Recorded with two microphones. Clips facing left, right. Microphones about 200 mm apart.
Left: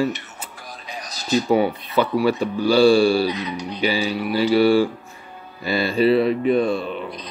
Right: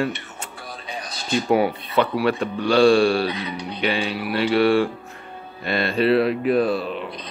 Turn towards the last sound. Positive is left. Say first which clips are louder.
# even
turn(degrees=0)  # may be behind; listen again after turning